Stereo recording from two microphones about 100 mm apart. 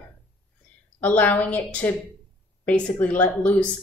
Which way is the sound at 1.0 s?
15° left (ahead or behind).